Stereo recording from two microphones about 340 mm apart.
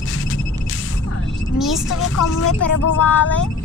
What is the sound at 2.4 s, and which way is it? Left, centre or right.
Speech, left.